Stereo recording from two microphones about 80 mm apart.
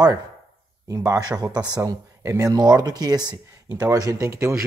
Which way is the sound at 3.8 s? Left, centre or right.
Right.